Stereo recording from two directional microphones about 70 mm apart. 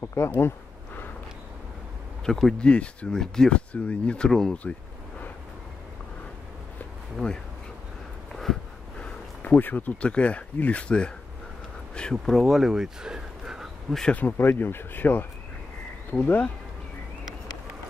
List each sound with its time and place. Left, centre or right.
0.0 s a sound: left
2.2 s speech: centre
2.7 s speech: centre
4.3 s speech: centre
7.2 s speech: centre
8.3 s a sound: centre
9.0 s speech: left
11.9 s a sound: centre
12.3 s speech: centre
14.1 s speech: left